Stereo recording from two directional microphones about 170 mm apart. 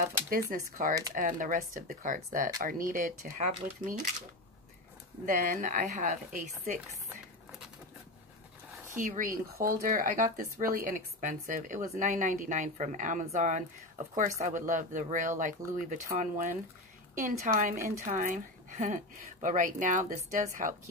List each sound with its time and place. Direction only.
0.3 s speech: 55° right (ahead or behind)
5.2 s speech: 50° right (ahead or behind)
8.9 s speech: 50° right (ahead or behind)